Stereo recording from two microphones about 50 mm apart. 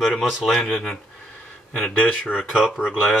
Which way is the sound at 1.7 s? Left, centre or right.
Centre.